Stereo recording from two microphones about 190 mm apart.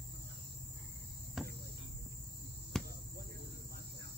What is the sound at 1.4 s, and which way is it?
Cricket, centre (ahead or behind).